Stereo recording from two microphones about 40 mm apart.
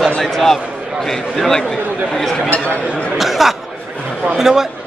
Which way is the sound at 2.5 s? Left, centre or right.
Left.